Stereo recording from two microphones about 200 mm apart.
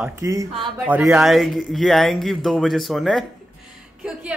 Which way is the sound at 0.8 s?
5° right (ahead or behind).